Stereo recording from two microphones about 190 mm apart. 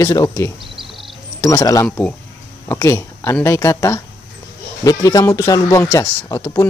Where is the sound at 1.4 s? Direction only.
15° left (ahead or behind).